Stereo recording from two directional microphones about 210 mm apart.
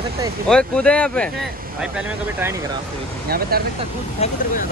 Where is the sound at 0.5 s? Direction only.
5° left (ahead or behind).